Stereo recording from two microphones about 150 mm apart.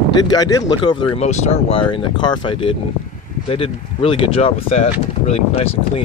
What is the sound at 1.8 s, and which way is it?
Speech, 35° left (ahead or behind).